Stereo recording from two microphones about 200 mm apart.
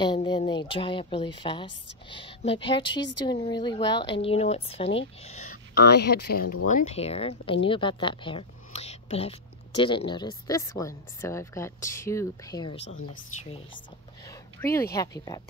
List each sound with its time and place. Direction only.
0.0 s speech: 20° left (ahead or behind)
12.7 s speech: 65° left (ahead or behind)
13.1 s speech: 35° left (ahead or behind)
14.2 s speech: 15° left (ahead or behind)